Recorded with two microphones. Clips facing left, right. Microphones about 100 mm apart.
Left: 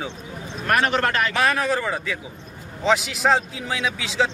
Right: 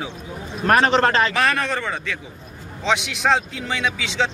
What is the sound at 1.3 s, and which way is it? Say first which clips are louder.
Speech: even; centre (ahead or behind).